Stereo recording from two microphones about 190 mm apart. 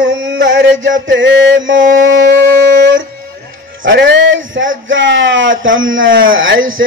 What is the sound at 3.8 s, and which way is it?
Speech, 75° right (ahead or behind).